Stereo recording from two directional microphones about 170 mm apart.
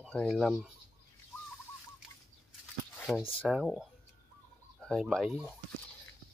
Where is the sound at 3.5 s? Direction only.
5° right (ahead or behind).